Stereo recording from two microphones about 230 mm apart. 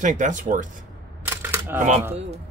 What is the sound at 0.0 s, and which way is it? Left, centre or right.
Speech, right.